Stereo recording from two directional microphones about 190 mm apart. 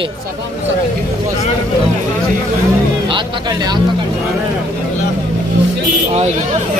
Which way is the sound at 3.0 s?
25° right (ahead or behind).